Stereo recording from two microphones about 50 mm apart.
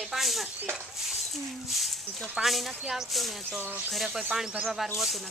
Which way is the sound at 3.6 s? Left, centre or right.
Right.